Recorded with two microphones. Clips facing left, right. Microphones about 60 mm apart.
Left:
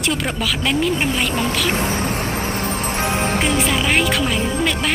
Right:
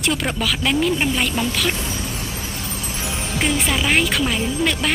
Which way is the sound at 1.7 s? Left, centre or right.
Left.